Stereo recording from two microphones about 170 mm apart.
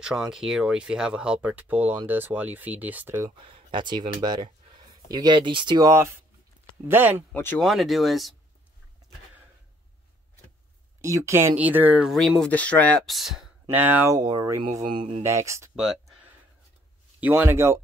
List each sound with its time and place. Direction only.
0.0 s speech: 5° right (ahead or behind)
7.3 s speech: 10° left (ahead or behind)
7.6 s speech: centre (ahead or behind)
11.0 s speech: 20° right (ahead or behind)
15.2 s speech: 15° right (ahead or behind)
15.7 s a sound: 5° right (ahead or behind)
17.2 s speech: 10° right (ahead or behind)